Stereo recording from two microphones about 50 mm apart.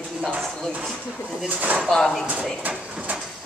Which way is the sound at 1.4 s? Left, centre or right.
Right.